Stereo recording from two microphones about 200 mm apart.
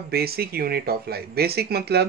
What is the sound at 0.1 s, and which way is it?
Speech, 50° right (ahead or behind).